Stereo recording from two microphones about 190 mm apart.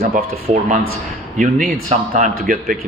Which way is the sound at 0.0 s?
35° right (ahead or behind).